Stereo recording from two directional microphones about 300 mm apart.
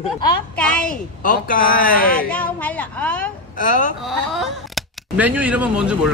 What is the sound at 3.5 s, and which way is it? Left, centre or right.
Speech, left.